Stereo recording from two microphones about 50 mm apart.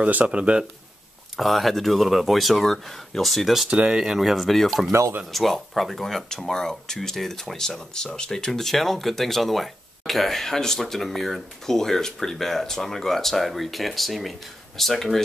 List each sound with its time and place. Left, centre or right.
0.0 s speech: right
1.3 s speech: centre
3.7 s speech: centre